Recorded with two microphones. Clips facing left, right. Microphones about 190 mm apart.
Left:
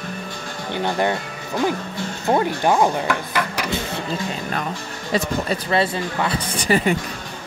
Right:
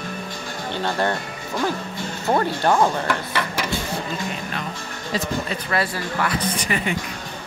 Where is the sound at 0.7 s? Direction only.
15° left (ahead or behind).